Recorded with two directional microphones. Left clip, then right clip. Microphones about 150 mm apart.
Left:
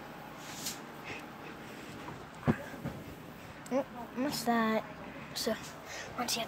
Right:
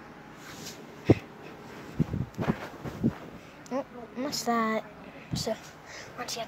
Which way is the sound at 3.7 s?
10° left (ahead or behind).